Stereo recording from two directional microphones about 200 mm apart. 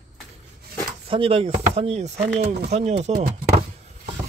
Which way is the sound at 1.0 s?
30° right (ahead or behind).